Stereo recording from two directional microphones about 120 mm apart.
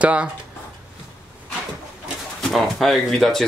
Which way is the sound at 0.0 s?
10° right (ahead or behind).